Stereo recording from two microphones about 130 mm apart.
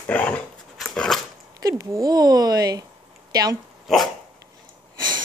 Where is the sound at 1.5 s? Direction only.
30° right (ahead or behind).